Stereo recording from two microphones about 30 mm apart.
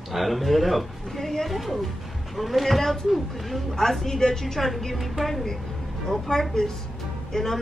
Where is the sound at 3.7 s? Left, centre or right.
Centre.